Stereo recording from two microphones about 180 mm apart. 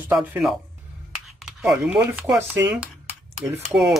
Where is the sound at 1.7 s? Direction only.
10° right (ahead or behind).